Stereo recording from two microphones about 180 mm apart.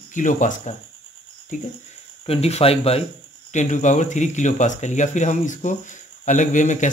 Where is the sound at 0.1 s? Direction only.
45° left (ahead or behind).